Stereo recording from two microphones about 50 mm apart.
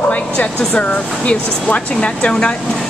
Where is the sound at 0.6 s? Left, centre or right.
Left.